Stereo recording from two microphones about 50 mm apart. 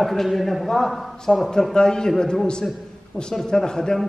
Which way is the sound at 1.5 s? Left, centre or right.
Centre.